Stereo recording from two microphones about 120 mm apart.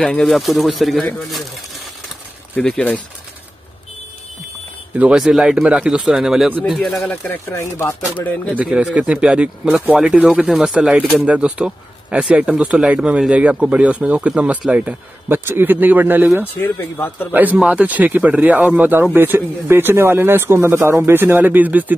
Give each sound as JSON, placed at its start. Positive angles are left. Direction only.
{"t": 0.0, "sound": "speech", "side_deg": 5}
{"t": 2.5, "sound": "speech", "side_deg": 10}
{"t": 4.9, "sound": "speech", "side_deg": -5}
{"t": 7.2, "sound": "speech", "side_deg": 20}
{"t": 8.5, "sound": "speech", "side_deg": -5}
{"t": 16.5, "sound": "speech", "side_deg": 15}
{"t": 17.3, "sound": "speech", "side_deg": -15}